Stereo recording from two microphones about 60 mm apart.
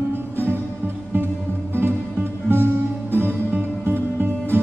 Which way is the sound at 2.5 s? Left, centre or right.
Right.